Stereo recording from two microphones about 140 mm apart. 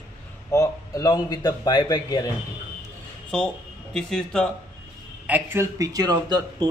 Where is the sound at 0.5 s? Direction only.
20° left (ahead or behind).